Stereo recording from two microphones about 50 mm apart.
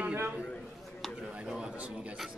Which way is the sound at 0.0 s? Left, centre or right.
Right.